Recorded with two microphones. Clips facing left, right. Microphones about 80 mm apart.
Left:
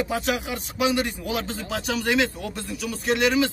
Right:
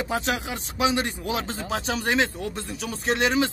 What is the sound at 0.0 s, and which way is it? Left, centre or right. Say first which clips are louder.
A man's voice: left 1 dB; right.